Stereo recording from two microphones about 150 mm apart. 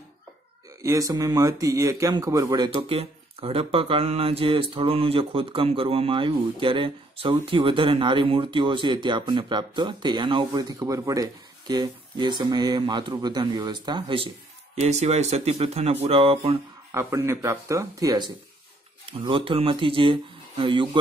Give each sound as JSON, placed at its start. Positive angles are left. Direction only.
{"t": 0.8, "sound": "speech", "side_deg": -20}
{"t": 3.0, "sound": "speech", "side_deg": -40}
{"t": 14.8, "sound": "speech", "side_deg": -45}
{"t": 16.9, "sound": "speech", "side_deg": -15}